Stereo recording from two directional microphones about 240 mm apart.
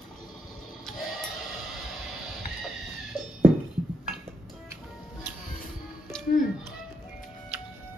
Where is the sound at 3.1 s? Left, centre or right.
Centre.